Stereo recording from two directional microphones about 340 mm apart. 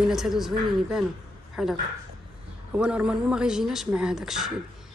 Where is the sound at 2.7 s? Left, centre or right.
Centre.